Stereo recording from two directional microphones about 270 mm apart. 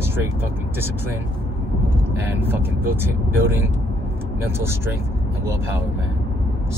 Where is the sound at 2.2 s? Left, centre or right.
Centre.